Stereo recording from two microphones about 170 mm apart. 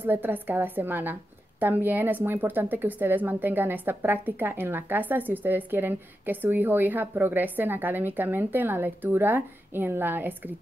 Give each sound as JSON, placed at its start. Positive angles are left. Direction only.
{"t": 0.0, "sound": "a woman's voice", "side_deg": -10}